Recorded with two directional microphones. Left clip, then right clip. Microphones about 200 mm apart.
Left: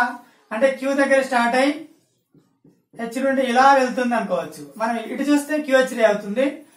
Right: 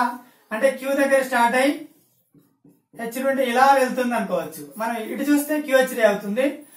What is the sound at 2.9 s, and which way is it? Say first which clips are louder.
Speech: left 1 dB; centre (ahead or behind).